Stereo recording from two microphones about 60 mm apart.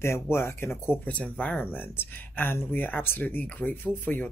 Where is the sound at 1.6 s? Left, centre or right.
Left.